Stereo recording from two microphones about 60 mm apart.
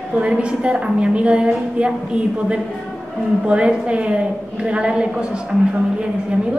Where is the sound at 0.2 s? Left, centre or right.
Centre.